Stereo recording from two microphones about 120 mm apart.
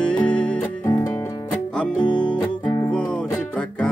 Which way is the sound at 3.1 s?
10° left (ahead or behind).